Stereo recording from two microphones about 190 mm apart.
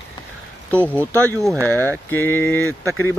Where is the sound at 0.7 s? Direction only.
10° right (ahead or behind).